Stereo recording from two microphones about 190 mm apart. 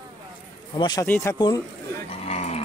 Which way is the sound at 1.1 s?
10° left (ahead or behind).